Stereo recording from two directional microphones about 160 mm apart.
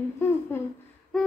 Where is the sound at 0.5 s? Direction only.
15° left (ahead or behind).